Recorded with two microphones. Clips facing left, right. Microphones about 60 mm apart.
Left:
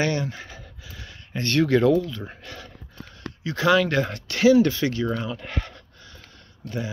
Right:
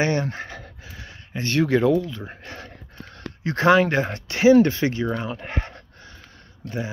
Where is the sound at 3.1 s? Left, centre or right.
Right.